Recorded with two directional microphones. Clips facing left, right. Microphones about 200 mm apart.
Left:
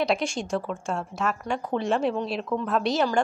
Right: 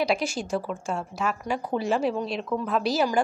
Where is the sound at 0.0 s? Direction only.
Centre (ahead or behind).